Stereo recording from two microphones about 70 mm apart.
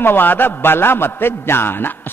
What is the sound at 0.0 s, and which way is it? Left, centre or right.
A man's voice, left.